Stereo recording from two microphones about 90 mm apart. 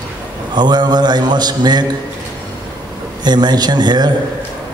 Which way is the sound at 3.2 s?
55° right (ahead or behind).